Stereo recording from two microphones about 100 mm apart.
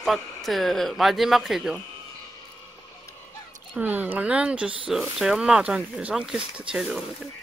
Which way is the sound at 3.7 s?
15° right (ahead or behind).